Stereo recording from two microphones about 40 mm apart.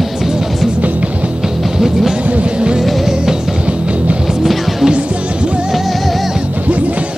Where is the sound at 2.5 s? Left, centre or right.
Right.